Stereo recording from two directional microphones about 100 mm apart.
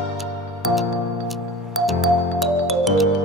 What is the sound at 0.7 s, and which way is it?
Music, centre (ahead or behind).